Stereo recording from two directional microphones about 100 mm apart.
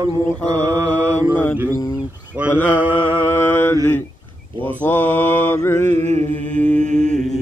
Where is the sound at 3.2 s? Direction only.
20° left (ahead or behind).